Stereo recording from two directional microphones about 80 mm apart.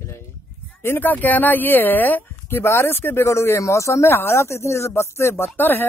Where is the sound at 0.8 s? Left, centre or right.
Left.